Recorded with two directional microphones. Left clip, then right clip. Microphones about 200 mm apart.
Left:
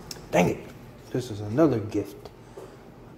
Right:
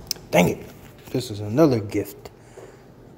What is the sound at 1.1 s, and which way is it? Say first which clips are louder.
Speech: right 4 dB; 25° right (ahead or behind).